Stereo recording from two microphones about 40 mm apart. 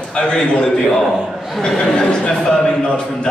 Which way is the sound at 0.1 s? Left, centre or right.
Left.